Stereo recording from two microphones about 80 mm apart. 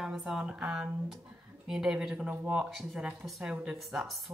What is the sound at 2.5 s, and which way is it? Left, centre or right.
Speech, centre.